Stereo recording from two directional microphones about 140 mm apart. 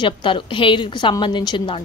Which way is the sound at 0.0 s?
35° left (ahead or behind).